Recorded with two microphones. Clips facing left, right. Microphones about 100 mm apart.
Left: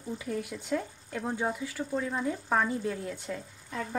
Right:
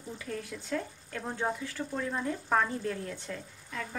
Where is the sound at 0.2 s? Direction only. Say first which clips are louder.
Left 4 dB; 15° left (ahead or behind).